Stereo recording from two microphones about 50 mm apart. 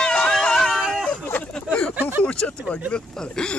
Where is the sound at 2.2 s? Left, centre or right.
Left.